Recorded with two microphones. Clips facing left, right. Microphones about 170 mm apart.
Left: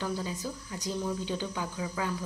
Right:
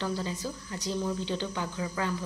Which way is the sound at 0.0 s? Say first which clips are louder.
Right 1 dB; 10° left (ahead or behind).